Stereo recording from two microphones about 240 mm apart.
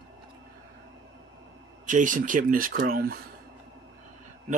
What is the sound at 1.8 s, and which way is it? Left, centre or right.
Speech, right.